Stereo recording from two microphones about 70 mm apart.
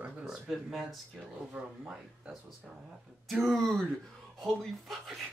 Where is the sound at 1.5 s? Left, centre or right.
Centre.